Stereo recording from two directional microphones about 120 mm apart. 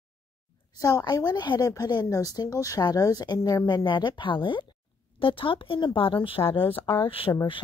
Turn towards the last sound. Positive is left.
turn(degrees=50)  # may be behind; listen again after turning